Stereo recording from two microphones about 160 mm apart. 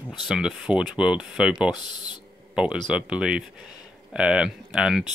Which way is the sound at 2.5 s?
5° right (ahead or behind).